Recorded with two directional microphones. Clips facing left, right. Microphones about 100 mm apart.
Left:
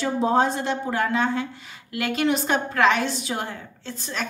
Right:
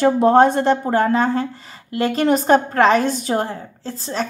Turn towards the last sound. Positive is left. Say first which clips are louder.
# right 6 dB
turn(degrees=-35)  # may be behind; listen again after turning